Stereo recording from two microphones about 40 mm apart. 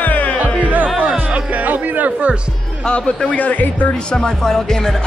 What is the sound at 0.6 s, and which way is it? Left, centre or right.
Speech, right.